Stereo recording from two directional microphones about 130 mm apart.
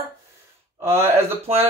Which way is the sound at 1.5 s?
50° right (ahead or behind).